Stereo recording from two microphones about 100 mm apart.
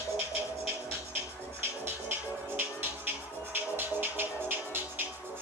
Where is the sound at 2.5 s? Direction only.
20° right (ahead or behind).